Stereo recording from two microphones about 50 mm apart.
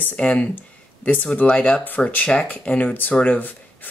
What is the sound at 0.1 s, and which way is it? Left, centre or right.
Speech, left.